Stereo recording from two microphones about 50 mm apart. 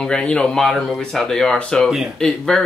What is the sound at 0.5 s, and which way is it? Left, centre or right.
Speech, centre.